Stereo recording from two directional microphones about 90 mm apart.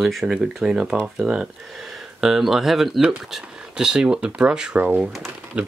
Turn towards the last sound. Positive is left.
turn(degrees=-10)  # may be behind; listen again after turning